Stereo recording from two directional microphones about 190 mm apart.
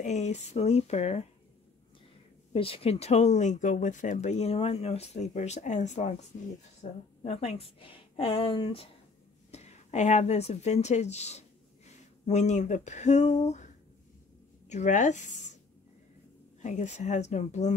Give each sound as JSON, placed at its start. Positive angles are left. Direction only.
{"t": 0.0, "sound": "speech", "side_deg": 35}
{"t": 2.5, "sound": "a woman's voice", "side_deg": 30}
{"t": 14.7, "sound": "speech", "side_deg": 40}
{"t": 16.6, "sound": "speech", "side_deg": 40}